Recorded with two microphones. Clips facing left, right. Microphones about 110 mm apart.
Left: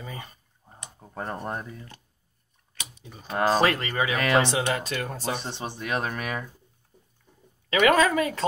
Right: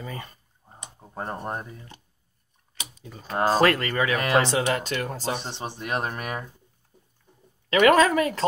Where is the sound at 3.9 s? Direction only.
55° right (ahead or behind).